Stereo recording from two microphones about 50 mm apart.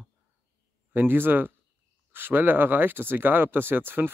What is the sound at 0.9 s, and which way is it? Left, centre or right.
Speech, right.